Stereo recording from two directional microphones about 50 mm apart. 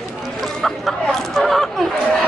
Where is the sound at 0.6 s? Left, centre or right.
Centre.